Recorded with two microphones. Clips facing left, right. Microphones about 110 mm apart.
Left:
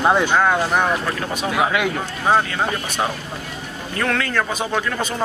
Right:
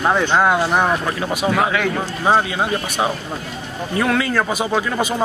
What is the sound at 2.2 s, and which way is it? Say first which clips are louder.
A man's voice: right 1 dB; 10° right (ahead or behind).